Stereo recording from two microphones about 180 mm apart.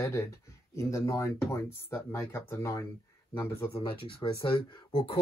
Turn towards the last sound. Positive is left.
turn(degrees=30)  # may be behind; listen again after turning